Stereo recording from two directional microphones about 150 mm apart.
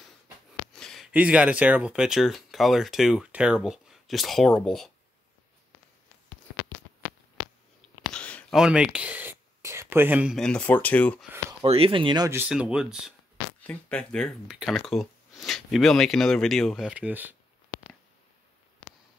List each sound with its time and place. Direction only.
0.7 s a sound: 5° left (ahead or behind)
1.1 s speech: 10° right (ahead or behind)
8.1 s a sound: 10° left (ahead or behind)
8.5 s speech: 5° right (ahead or behind)
10.3 s speech: 5° left (ahead or behind)
11.6 s speech: 40° right (ahead or behind)
12.3 s speech: 10° right (ahead or behind)
13.7 s speech: 5° left (ahead or behind); by 17.4 s 10° right (ahead or behind)